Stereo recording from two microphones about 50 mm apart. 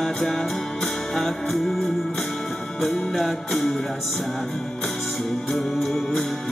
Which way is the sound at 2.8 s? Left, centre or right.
Centre.